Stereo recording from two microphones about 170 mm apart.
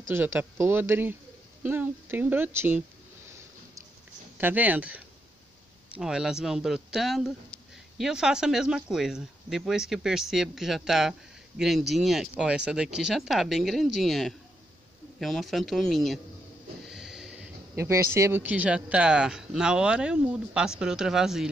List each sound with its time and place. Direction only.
0.1 s a woman's voice: 10° right (ahead or behind)
4.4 s a woman's voice: 10° right (ahead or behind)
16.8 s a sound: centre (ahead or behind)
17.7 s a woman's voice: 15° right (ahead or behind)